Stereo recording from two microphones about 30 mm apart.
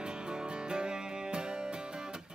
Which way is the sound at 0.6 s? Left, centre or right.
Right.